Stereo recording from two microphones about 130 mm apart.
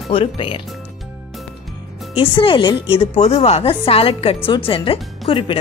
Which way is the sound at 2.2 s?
40° left (ahead or behind).